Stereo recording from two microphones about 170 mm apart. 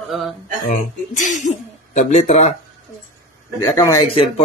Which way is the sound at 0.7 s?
50° left (ahead or behind).